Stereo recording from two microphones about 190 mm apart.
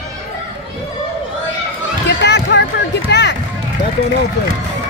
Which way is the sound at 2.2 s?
65° left (ahead or behind).